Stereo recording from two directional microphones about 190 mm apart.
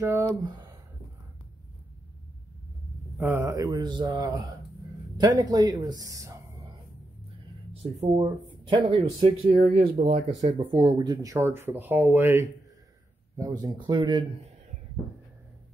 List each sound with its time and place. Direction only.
0.0 s speech: 15° right (ahead or behind)
3.2 s speech: 10° right (ahead or behind)
7.8 s speech: 30° right (ahead or behind)
10.4 s speech: 20° right (ahead or behind)